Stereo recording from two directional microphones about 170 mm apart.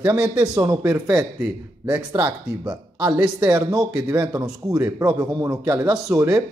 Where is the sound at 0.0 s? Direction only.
15° right (ahead or behind).